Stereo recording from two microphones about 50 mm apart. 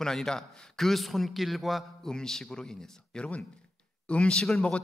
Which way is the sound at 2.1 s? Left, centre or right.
Centre.